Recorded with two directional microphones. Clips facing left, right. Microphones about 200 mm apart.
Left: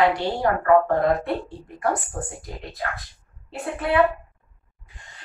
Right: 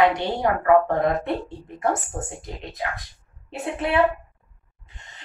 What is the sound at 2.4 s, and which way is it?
A woman's voice, 20° right (ahead or behind).